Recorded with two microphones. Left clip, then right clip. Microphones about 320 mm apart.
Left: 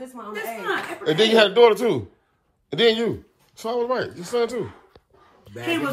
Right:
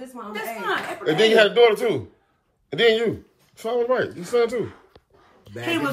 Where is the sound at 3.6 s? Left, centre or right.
Centre.